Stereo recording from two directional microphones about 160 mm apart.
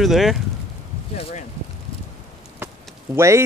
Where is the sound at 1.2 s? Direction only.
40° left (ahead or behind).